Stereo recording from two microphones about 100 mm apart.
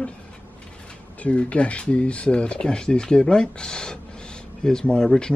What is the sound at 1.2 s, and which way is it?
Speech, 15° left (ahead or behind).